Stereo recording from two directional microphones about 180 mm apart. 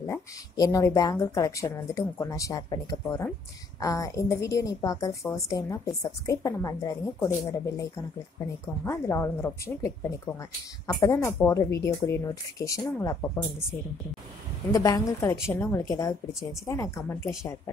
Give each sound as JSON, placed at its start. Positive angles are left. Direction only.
{"t": 0.0, "sound": "a woman's voice", "side_deg": 15}